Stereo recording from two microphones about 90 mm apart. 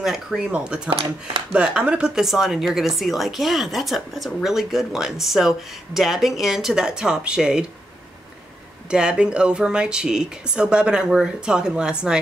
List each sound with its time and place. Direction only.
0.0 s a woman's voice: 5° right (ahead or behind)
0.4 s speech: 15° right (ahead or behind)
0.8 s speech: 70° right (ahead or behind)
1.5 s a woman's voice: 10° right (ahead or behind)
8.9 s speech: 10° right (ahead or behind)